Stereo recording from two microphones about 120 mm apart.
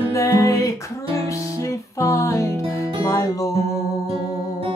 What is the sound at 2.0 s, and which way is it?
Music, 25° left (ahead or behind).